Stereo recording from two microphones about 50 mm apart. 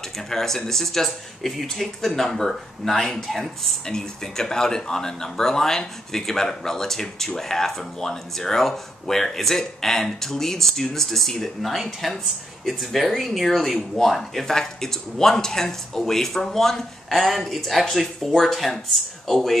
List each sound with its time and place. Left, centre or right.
0.3 s speech: centre